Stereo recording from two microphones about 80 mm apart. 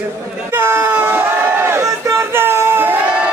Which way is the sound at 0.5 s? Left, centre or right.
Right.